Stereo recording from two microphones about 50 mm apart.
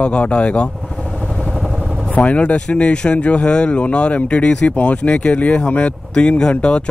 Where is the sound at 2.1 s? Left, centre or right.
Left.